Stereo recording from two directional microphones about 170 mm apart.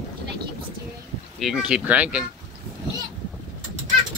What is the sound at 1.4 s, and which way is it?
Speech, 5° right (ahead or behind).